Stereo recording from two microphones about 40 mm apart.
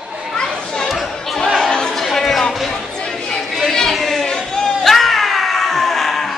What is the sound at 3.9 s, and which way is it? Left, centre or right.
Chatter, centre.